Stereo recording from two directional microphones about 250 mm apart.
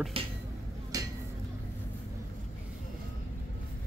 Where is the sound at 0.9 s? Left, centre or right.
Centre.